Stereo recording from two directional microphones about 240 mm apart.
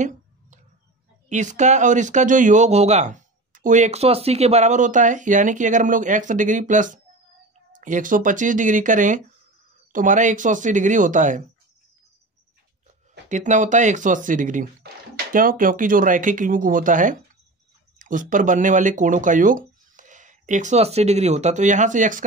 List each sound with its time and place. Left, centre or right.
1.3 s speech: right
13.3 s speech: right